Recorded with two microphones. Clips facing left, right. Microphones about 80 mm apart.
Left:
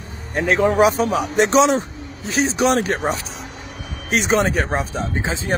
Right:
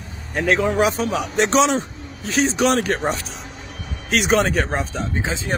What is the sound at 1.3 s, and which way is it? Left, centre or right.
A man's voice, centre.